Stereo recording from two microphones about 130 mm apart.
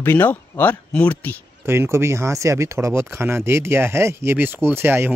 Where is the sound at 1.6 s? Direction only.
20° right (ahead or behind).